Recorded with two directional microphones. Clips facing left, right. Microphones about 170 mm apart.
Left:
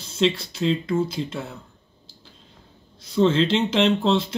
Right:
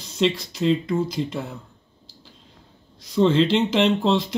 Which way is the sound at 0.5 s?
15° right (ahead or behind).